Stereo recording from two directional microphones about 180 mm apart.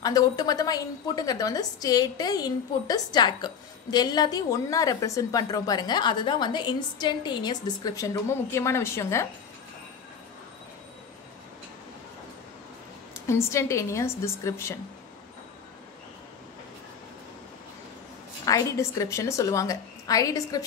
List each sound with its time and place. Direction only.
0.0 s a woman's voice: 20° left (ahead or behind)
13.1 s a woman's voice: 15° left (ahead or behind)
18.4 s a woman's voice: 20° left (ahead or behind)